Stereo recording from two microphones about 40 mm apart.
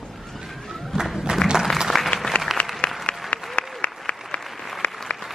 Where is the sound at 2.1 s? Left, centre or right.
Left.